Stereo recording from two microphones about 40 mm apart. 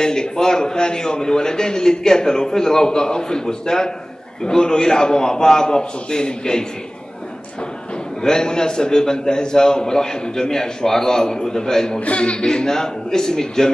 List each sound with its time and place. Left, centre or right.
0.0 s a man's voice: centre
8.2 s a man's voice: centre
12.0 s a man's voice: left; by 13.7 s centre